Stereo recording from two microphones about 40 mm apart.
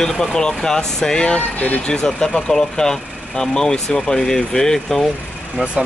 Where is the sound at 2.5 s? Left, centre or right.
Centre.